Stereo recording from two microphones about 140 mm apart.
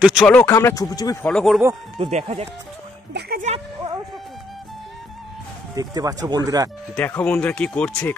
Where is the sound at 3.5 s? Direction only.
55° right (ahead or behind).